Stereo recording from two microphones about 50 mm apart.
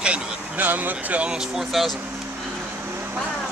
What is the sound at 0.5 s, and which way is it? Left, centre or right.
Speech, right.